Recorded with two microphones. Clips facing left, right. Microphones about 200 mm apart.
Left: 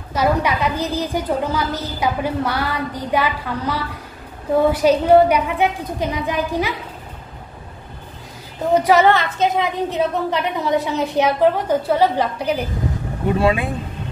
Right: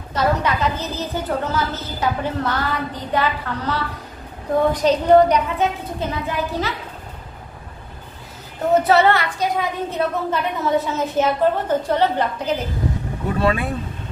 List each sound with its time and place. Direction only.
0.1 s a woman's voice: 10° left (ahead or behind)
8.7 s a woman's voice: 15° left (ahead or behind)
13.4 s a woman's voice: 15° left (ahead or behind)